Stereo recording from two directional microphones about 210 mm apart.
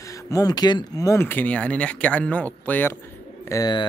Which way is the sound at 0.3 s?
15° left (ahead or behind).